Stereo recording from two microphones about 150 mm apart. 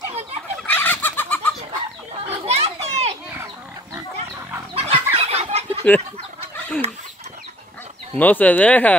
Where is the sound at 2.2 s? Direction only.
45° right (ahead or behind).